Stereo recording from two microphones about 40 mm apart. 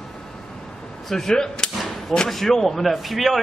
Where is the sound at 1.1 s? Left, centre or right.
Centre.